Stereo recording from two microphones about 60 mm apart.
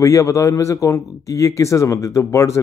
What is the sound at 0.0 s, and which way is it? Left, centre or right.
Speech, left.